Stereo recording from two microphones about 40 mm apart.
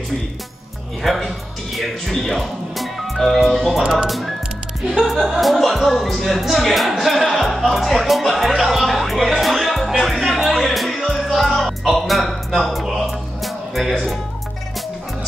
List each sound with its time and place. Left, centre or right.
1.0 s speech: centre
2.7 s music: centre
3.8 s speech: right
4.1 s speech: centre
9.4 s music: centre